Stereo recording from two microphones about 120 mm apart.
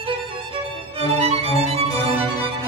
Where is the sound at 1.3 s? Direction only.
60° right (ahead or behind).